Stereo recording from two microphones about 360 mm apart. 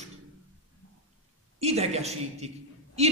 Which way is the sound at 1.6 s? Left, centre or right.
Centre.